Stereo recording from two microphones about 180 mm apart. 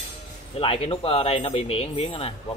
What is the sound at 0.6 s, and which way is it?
Speech, 30° left (ahead or behind).